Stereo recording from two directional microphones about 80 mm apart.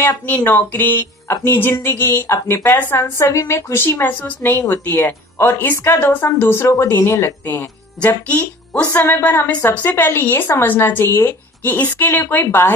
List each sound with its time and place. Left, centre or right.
0.3 s a woman's voice: left
8.0 s a woman's voice: left